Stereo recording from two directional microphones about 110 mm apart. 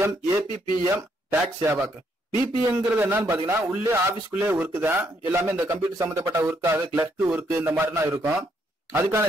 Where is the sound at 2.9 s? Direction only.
20° right (ahead or behind).